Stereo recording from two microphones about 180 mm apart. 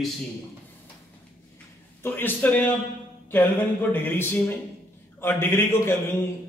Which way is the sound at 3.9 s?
10° left (ahead or behind).